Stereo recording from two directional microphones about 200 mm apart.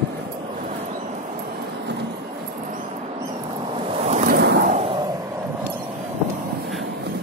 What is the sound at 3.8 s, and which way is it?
Ocean, 30° right (ahead or behind).